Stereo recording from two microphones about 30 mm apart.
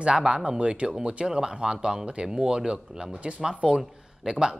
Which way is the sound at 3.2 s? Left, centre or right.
Right.